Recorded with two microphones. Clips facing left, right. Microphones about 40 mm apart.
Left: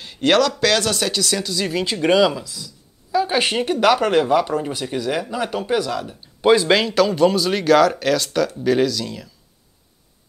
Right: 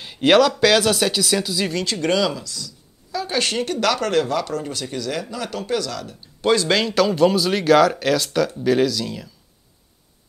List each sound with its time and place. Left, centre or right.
0.0 s a man's voice: centre
1.7 s speech: centre
6.8 s speech: centre